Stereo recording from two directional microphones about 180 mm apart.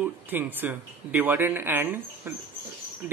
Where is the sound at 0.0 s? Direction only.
10° right (ahead or behind).